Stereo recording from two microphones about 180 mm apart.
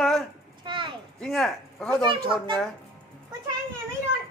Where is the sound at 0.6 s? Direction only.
25° right (ahead or behind).